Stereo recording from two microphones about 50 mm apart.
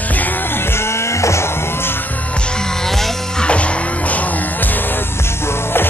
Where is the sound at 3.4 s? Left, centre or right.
Left.